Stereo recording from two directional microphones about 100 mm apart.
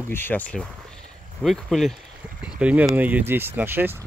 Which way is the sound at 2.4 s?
15° right (ahead or behind).